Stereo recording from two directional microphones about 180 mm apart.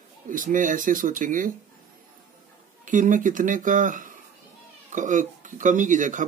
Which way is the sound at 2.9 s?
45° right (ahead or behind).